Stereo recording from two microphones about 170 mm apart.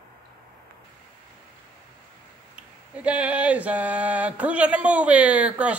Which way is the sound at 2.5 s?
5° right (ahead or behind).